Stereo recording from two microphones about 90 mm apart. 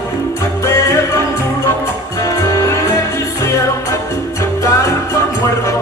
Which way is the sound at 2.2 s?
35° left (ahead or behind).